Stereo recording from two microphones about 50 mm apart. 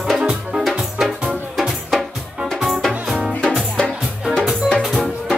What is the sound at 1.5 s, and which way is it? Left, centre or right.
Music, centre.